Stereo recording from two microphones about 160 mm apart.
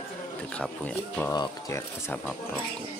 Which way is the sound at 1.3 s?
25° left (ahead or behind).